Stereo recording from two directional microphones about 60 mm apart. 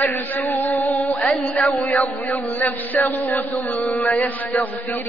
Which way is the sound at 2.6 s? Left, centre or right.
Left.